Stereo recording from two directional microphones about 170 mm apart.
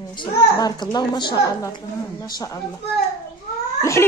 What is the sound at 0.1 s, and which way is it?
A child's voice, 30° left (ahead or behind).